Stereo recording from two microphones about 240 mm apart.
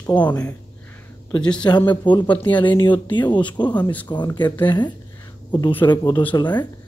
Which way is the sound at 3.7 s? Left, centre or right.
Centre.